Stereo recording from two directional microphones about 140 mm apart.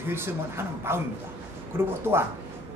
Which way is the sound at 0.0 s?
15° right (ahead or behind).